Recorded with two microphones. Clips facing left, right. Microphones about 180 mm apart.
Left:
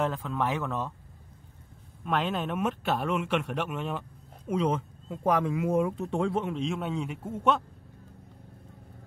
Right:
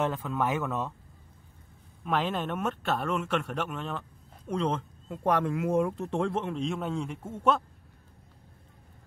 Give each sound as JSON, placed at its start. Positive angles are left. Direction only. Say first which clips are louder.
{"t": 0.0, "sound": "speech", "louder": "even", "side_deg": 0}
{"t": 2.0, "sound": "speech", "louder": "even", "side_deg": 0}